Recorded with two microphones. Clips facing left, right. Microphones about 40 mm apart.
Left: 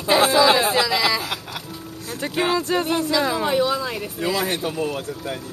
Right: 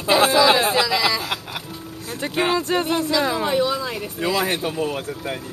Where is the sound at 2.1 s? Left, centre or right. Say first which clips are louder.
Right 1 dB; centre.